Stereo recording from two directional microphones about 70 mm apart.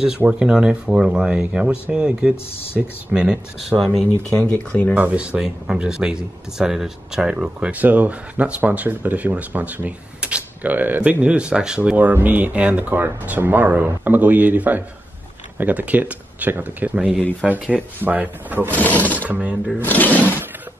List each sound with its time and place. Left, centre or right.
0.3 s speech: centre
4.4 s speech: centre
4.9 s speech: centre
7.3 s speech: right
18.7 s speech: left
19.2 s speech: right
19.8 s speech: left